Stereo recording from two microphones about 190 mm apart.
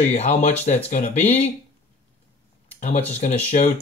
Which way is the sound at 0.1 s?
35° left (ahead or behind).